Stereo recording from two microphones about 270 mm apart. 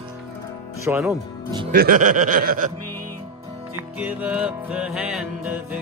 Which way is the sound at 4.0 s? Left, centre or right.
Centre.